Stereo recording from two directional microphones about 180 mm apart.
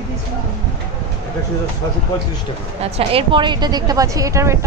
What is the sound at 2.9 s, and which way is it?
Speech, 30° right (ahead or behind).